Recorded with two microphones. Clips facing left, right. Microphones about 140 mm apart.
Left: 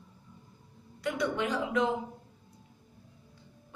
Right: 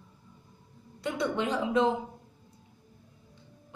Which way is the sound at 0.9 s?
25° right (ahead or behind).